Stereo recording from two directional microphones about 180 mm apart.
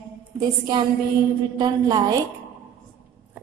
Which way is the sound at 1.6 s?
20° right (ahead or behind).